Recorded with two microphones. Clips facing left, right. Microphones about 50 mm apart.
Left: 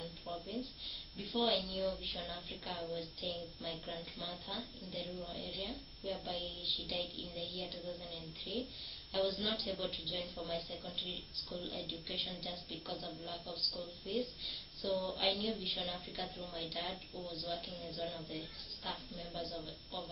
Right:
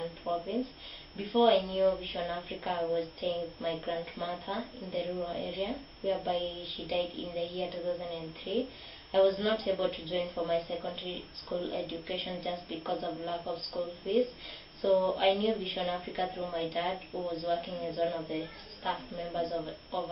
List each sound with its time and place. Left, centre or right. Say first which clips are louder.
0.0 s speech: right 11 dB; right